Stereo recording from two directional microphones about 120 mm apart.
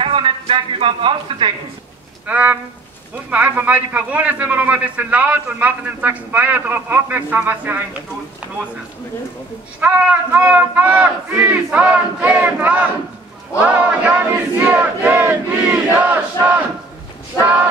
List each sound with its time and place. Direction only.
0.0 s speech: 50° right (ahead or behind)
2.2 s a man's voice: 10° right (ahead or behind)
9.8 s a man's voice: 15° right (ahead or behind)
14.6 s battle cry: 10° right (ahead or behind)